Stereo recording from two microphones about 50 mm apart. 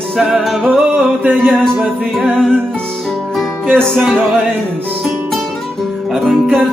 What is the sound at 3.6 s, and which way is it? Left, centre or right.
Music, right.